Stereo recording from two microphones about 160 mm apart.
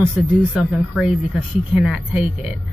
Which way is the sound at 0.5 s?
5° right (ahead or behind).